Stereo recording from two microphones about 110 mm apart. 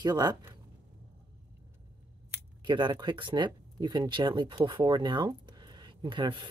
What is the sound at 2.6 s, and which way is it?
Speech, 45° right (ahead or behind).